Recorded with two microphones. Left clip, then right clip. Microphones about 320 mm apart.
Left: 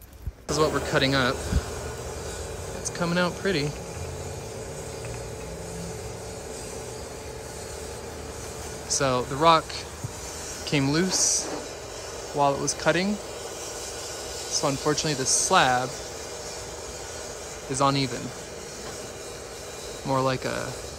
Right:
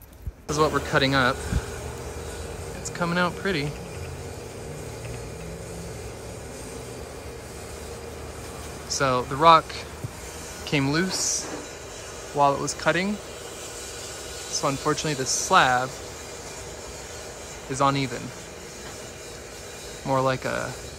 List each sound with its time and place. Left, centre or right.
0.5 s speech: centre
3.0 s speech: centre
8.8 s speech: centre
10.7 s speech: centre
14.6 s speech: centre
17.7 s speech: centre
20.1 s speech: centre